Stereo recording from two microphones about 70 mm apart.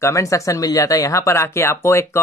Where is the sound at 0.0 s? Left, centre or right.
Left.